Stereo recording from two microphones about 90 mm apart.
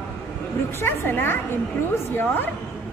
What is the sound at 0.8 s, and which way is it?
Speech, 25° left (ahead or behind).